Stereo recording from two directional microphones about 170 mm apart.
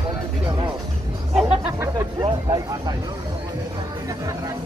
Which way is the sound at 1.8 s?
20° right (ahead or behind).